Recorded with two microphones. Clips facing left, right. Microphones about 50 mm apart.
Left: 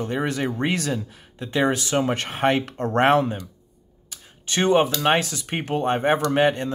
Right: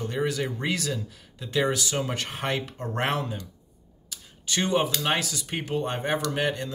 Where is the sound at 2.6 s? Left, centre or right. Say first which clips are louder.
Left 8 dB; left.